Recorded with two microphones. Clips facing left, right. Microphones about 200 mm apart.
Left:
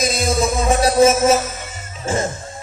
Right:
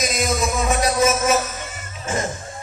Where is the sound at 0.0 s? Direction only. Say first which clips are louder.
Left 3 dB; 30° left (ahead or behind).